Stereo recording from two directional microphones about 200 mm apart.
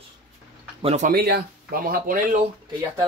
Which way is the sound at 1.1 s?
50° right (ahead or behind).